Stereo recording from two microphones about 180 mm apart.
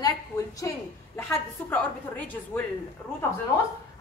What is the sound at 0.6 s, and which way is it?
A woman's voice, 15° left (ahead or behind).